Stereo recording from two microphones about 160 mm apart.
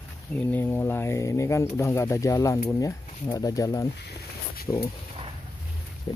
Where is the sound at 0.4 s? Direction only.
10° left (ahead or behind).